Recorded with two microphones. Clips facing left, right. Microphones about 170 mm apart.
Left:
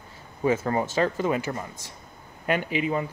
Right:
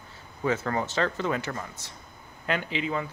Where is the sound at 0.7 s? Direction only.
15° left (ahead or behind).